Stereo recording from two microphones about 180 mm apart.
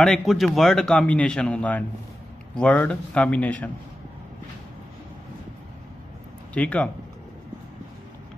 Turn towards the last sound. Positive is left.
turn(degrees=5)  # may be behind; listen again after turning